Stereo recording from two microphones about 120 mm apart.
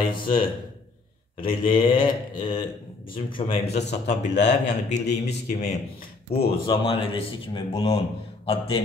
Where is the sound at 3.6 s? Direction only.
70° left (ahead or behind).